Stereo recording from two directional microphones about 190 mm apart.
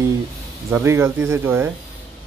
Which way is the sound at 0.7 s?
10° right (ahead or behind).